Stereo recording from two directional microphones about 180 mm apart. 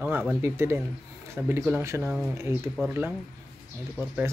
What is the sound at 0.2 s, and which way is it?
Speech, 10° right (ahead or behind).